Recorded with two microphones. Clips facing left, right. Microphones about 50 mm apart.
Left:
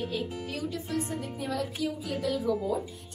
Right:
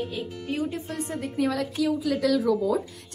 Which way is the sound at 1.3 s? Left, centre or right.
Right.